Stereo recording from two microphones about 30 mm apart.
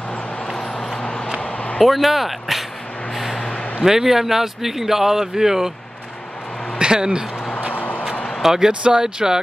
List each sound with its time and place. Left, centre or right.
1.9 s speech: centre
3.8 s speech: centre
6.8 s speech: right
7.7 s vehicle: left
8.4 s speech: centre